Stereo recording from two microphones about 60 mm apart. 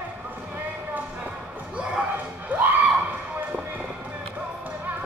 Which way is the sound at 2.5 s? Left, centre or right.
Right.